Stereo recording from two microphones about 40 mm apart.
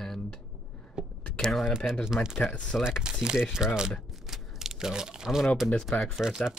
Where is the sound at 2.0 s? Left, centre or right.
Centre.